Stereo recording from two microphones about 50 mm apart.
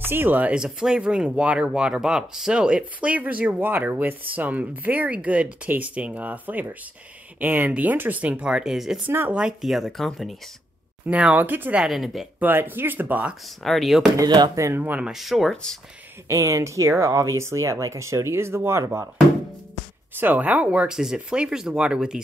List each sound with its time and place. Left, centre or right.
0.0 s speech: right
0.7 s speech: centre
11.1 s speech: right
11.3 s speech: right
11.8 s speech: centre
12.4 s speech: right
13.7 s speech: centre
14.1 s speech: right
14.7 s speech: right
15.0 s speech: centre
15.5 s speech: centre
16.3 s speech: right
20.3 s speech: right
20.9 s speech: centre